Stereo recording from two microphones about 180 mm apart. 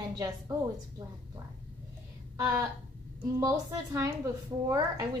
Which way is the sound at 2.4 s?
15° right (ahead or behind).